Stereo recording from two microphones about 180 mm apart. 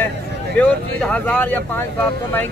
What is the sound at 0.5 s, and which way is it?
Speech, 5° left (ahead or behind).